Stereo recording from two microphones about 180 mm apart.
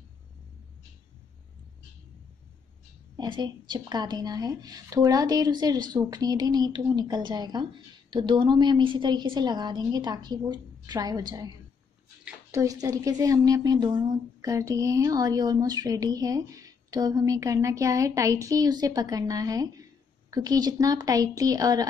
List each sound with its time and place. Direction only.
3.2 s speech: 25° right (ahead or behind)